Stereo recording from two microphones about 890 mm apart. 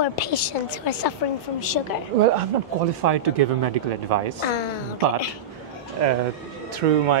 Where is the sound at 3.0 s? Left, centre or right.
Right.